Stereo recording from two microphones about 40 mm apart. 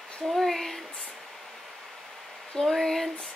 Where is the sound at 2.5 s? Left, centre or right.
Centre.